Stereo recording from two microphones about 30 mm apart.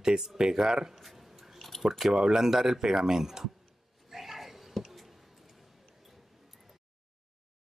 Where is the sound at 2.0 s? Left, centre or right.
Centre.